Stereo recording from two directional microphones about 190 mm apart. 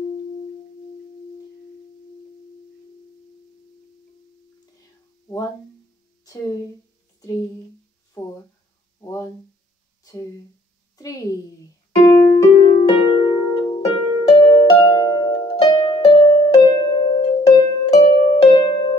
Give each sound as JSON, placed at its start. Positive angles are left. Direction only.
{"t": 12.3, "sound": "harp", "side_deg": 30}